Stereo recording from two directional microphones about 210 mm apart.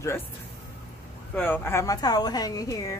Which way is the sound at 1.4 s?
10° left (ahead or behind).